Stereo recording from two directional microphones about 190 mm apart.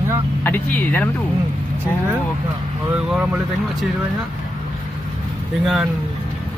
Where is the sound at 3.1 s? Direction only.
5° right (ahead or behind).